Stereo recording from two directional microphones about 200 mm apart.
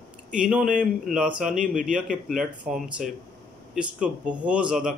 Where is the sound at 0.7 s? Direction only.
5° right (ahead or behind).